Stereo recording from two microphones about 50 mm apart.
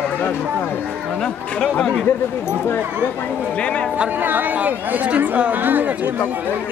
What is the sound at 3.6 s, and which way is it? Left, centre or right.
Speech, left.